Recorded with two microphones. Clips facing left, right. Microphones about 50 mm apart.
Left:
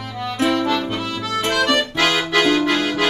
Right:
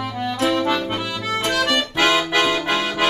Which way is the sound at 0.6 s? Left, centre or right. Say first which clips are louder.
Even; centre.